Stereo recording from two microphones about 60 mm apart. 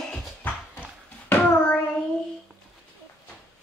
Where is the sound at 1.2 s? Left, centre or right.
Left.